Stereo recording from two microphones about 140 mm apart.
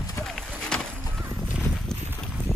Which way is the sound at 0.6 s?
5° left (ahead or behind).